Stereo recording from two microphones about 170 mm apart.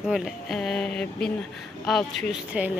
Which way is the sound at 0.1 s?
Centre (ahead or behind).